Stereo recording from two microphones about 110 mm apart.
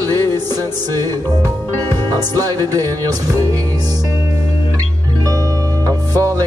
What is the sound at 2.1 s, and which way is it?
Speech, 35° right (ahead or behind).